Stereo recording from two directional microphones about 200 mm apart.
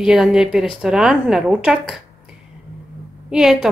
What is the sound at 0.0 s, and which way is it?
A woman's voice, centre (ahead or behind).